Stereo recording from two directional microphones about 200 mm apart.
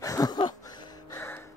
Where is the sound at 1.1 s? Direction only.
10° left (ahead or behind).